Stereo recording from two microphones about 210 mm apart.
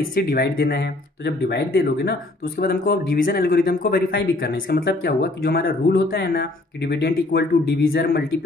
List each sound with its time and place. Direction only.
0.1 s a man's voice: 45° left (ahead or behind)